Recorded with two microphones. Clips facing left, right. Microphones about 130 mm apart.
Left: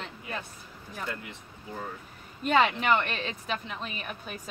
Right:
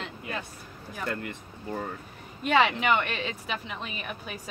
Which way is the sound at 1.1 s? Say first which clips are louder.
Right 5 dB; 55° right (ahead or behind).